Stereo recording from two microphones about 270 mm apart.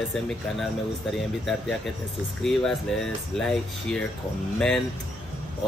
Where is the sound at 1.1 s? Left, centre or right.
Centre.